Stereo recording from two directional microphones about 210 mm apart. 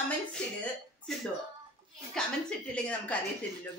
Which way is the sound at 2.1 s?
5° left (ahead or behind).